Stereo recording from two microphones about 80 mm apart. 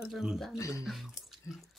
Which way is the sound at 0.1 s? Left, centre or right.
Centre.